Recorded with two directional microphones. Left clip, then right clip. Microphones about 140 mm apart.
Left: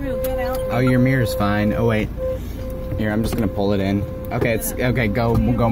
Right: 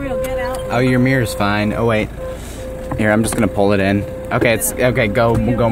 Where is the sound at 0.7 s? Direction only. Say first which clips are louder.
Right 5 dB; 20° right (ahead or behind).